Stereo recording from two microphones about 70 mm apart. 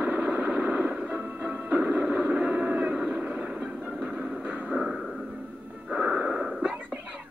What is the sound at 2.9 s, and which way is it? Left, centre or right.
Vehicle, centre.